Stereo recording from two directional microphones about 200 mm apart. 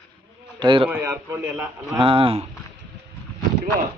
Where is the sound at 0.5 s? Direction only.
25° right (ahead or behind).